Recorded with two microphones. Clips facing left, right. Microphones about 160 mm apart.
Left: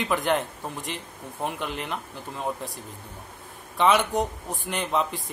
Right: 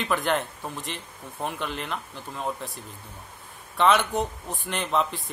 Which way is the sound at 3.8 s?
10° left (ahead or behind).